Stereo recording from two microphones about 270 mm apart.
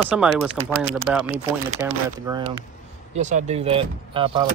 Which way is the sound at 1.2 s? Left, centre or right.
Right.